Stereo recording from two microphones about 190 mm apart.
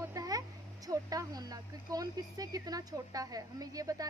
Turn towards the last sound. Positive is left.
turn(degrees=-20)  # may be behind; listen again after turning